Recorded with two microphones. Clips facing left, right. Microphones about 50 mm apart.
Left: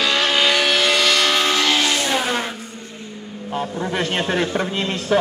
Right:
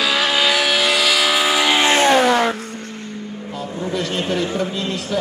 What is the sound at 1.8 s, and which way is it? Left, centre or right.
Music, right.